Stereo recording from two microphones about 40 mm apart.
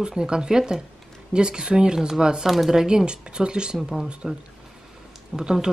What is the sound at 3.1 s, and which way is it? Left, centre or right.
Speech, right.